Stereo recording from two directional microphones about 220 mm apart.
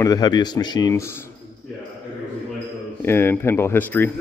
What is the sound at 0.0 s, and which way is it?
Speech, 15° left (ahead or behind).